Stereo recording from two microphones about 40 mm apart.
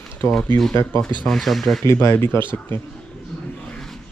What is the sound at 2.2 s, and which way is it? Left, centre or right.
Speech, left.